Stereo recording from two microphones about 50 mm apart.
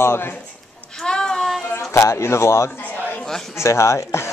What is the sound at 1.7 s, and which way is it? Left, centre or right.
A man's voice, left.